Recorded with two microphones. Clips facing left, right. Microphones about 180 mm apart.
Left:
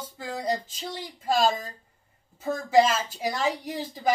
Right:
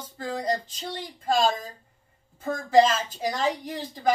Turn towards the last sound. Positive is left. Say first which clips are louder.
# right 1 dB
turn(degrees=10)  # may be behind; listen again after turning